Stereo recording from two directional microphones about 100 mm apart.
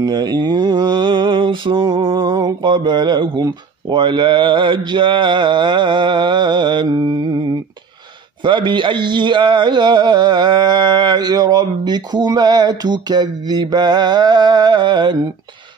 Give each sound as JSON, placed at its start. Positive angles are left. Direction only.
{"t": 0.0, "sound": "mantra", "side_deg": -45}
{"t": 8.5, "sound": "mantra", "side_deg": -55}